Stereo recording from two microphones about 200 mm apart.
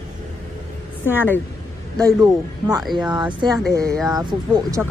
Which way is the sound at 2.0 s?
20° right (ahead or behind).